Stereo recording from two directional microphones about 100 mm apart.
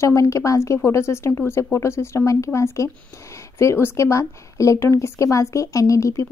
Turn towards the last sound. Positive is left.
turn(degrees=30)  # may be behind; listen again after turning